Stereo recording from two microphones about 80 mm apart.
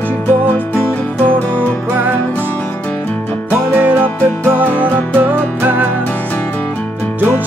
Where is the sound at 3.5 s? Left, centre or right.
Centre.